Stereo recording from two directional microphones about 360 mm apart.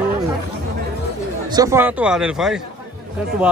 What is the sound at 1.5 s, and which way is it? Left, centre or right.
Speech, centre.